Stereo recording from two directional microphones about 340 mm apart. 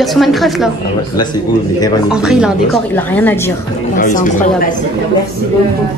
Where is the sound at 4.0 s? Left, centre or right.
Left.